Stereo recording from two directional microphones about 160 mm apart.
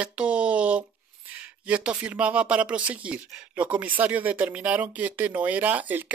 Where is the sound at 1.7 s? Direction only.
10° right (ahead or behind).